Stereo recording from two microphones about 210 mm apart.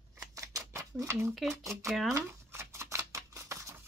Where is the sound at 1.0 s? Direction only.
10° right (ahead or behind).